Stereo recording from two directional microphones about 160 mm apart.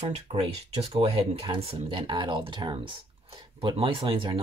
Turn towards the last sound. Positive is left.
turn(degrees=-30)  # may be behind; listen again after turning